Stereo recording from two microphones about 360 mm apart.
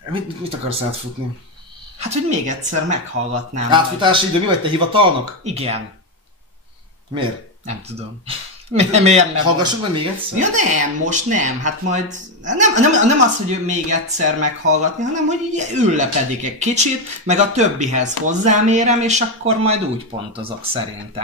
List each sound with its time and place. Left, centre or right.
0.1 s speech: centre
2.0 s a woman's voice: centre
8.3 s speech: centre